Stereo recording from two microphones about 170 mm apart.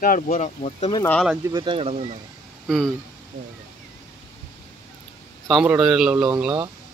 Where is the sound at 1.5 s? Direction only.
30° right (ahead or behind).